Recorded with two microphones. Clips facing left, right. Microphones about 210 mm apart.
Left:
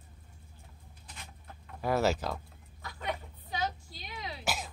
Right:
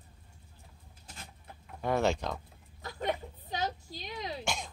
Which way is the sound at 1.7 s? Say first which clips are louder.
Even; 5° left (ahead or behind).